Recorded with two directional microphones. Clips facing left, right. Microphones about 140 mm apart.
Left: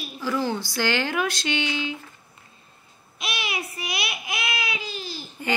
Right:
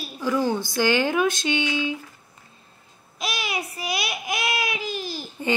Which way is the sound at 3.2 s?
40° right (ahead or behind).